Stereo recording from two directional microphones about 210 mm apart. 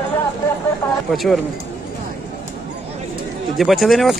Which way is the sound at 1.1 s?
Centre (ahead or behind).